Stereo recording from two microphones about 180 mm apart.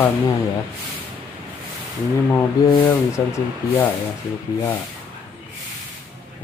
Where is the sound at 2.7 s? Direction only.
15° left (ahead or behind).